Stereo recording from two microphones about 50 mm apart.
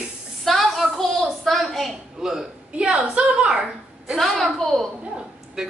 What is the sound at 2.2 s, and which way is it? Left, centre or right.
A woman's voice, centre.